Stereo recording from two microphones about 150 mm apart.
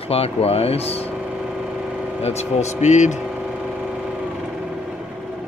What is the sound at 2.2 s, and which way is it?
Speech, 45° left (ahead or behind).